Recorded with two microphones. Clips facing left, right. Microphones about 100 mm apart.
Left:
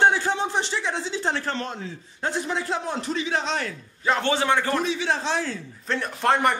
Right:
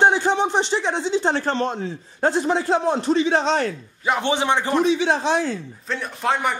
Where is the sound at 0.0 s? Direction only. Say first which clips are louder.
Right 3 dB; 20° right (ahead or behind).